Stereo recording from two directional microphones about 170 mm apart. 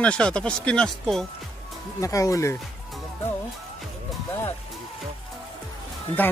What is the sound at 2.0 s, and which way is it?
Speech, 20° left (ahead or behind).